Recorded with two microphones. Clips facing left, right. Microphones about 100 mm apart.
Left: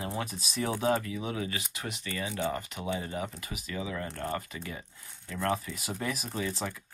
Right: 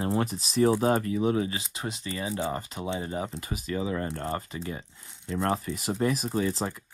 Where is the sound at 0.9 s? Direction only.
40° right (ahead or behind).